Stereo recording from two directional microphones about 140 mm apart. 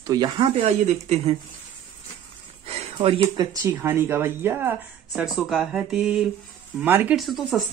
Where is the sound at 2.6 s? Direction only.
45° right (ahead or behind).